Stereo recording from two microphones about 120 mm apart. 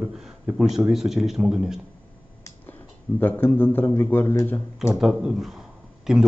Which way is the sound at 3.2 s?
15° left (ahead or behind).